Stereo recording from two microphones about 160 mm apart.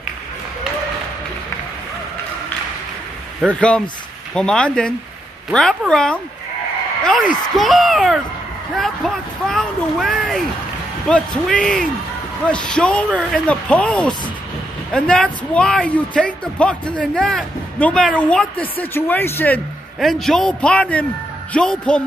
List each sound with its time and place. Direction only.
3.5 s speech: 5° left (ahead or behind)
20.0 s speech: centre (ahead or behind)